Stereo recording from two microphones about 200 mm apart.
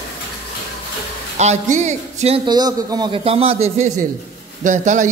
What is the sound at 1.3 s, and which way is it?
A man's voice, 35° right (ahead or behind).